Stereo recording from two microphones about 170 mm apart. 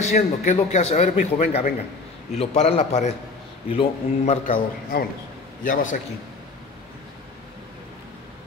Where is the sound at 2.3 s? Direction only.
40° left (ahead or behind).